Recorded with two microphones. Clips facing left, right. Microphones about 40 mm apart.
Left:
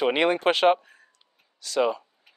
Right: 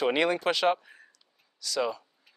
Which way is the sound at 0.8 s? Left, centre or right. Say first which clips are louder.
Right 1 dB; centre.